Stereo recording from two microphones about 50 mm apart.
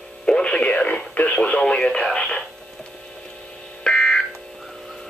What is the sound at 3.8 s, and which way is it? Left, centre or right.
Buzzer, centre.